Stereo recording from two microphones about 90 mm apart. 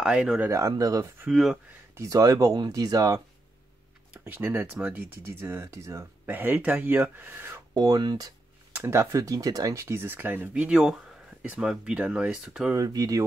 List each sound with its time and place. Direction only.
0.0 s speech: 10° right (ahead or behind)
0.5 s speech: 35° right (ahead or behind)
1.3 s speech: 5° right (ahead or behind)
2.0 s speech: 40° right (ahead or behind)
4.1 s speech: 20° right (ahead or behind)
6.2 s speech: 20° right (ahead or behind)
7.7 s speech: 50° right (ahead or behind)
8.7 s speech: 30° right (ahead or behind)
10.5 s speech: 10° right (ahead or behind)
12.7 s speech: 40° right (ahead or behind)